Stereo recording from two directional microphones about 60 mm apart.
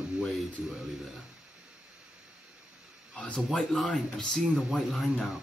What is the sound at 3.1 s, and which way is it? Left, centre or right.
Speech, centre.